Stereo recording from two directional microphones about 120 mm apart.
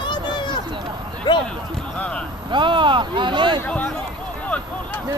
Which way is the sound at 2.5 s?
40° right (ahead or behind).